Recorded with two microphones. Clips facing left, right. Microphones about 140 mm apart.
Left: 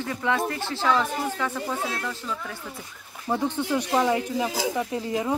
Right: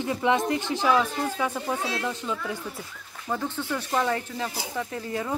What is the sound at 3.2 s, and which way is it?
Speech, 15° left (ahead or behind).